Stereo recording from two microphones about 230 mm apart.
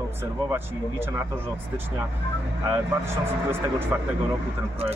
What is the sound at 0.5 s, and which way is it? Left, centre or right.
Speech, centre.